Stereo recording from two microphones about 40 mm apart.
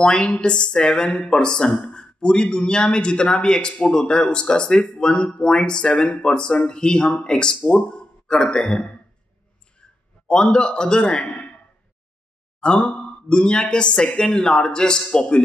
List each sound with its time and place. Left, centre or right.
0.0 s a man's voice: left
11.2 s a sound: left
12.5 s sigh: left
13.3 s speech: left